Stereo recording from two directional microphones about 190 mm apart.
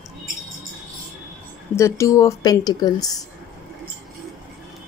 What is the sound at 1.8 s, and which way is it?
Speech, 15° left (ahead or behind).